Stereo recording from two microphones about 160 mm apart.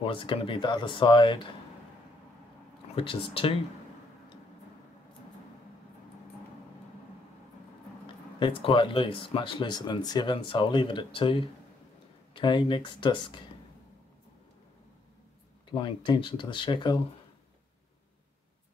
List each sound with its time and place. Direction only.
0.0 s speech: 35° left (ahead or behind)
3.0 s speech: 35° left (ahead or behind)
8.4 s speech: 30° left (ahead or behind)
15.7 s speech: 30° left (ahead or behind)